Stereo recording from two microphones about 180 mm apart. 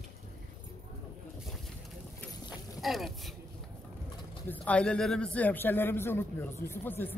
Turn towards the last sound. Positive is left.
turn(degrees=10)  # may be behind; listen again after turning